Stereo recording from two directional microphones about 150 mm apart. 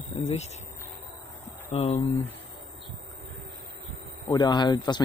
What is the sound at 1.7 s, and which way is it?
Speech, 45° left (ahead or behind).